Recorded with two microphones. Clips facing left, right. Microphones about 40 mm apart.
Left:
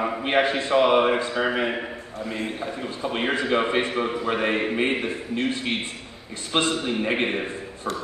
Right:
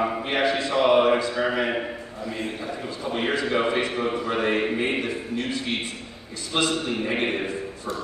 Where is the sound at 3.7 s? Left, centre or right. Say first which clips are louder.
Left 1 dB; left.